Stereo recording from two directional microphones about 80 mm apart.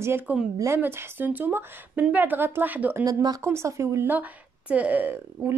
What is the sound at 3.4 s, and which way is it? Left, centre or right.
Speech, right.